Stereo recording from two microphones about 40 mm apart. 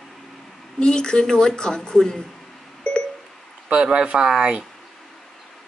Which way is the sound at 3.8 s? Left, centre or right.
Right.